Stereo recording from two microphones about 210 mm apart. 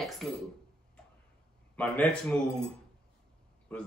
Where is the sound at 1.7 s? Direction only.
5° left (ahead or behind).